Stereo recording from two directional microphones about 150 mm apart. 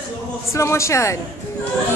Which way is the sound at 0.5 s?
20° left (ahead or behind).